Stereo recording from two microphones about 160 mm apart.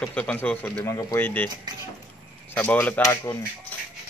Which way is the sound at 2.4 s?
10° left (ahead or behind).